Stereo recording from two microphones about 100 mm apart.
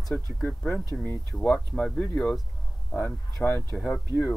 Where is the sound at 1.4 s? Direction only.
5° left (ahead or behind).